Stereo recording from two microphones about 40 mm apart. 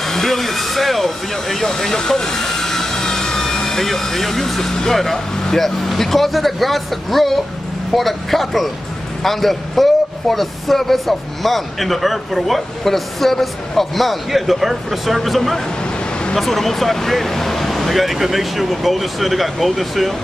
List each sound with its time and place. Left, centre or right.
0.0 s a man's voice: centre
15.8 s vehicle: left
16.3 s a man's voice: centre